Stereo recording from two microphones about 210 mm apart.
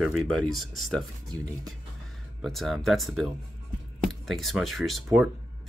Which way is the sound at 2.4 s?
Centre (ahead or behind).